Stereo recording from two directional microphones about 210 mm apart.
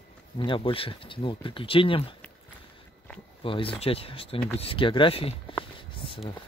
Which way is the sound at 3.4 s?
25° left (ahead or behind).